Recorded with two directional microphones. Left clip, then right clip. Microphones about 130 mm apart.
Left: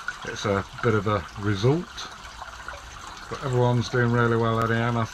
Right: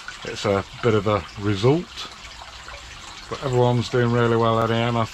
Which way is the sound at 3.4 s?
35° right (ahead or behind).